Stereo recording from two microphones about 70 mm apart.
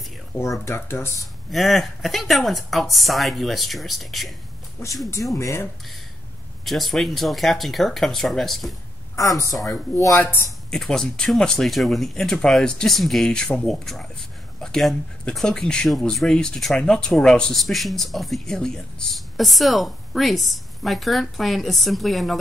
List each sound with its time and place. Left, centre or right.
0.4 s speech: left
1.2 s speech: centre
5.0 s speech: left
6.6 s speech: centre
9.1 s speech: left
10.1 s speech: left
10.7 s speech: centre